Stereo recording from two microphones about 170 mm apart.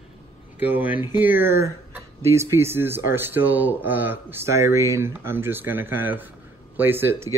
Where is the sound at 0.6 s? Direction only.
10° right (ahead or behind).